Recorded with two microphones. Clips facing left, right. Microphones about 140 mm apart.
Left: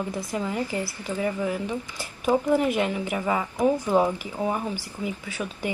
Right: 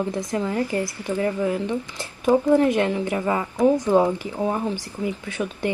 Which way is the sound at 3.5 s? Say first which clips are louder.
Right 4 dB; 15° right (ahead or behind).